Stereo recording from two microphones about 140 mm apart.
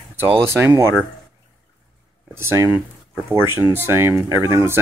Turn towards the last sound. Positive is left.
turn(degrees=-20)  # may be behind; listen again after turning